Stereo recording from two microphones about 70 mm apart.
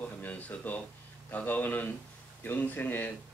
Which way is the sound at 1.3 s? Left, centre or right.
Left.